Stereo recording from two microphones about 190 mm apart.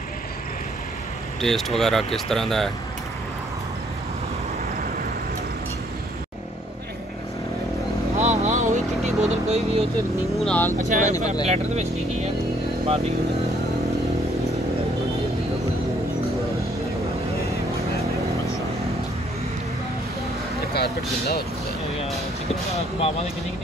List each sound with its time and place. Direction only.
1.4 s speech: centre (ahead or behind)
8.2 s vehicle: 40° right (ahead or behind)
9.9 s speech: 10° left (ahead or behind)
10.8 s speech: 40° right (ahead or behind)
20.7 s speech: 60° left (ahead or behind)